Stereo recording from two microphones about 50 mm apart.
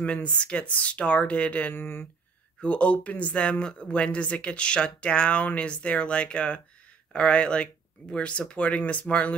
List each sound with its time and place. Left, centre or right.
0.0 s speech: left
1.7 s speech: left
2.6 s speech: left